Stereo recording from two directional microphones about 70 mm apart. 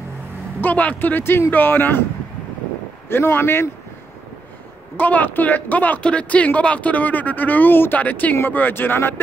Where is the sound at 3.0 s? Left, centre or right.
Left.